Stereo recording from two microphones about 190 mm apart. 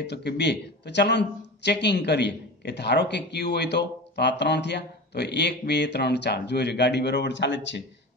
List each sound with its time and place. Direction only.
0.0 s speech: 60° left (ahead or behind)